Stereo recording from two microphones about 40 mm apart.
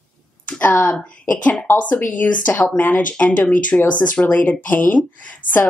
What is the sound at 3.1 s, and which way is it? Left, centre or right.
Speech, left.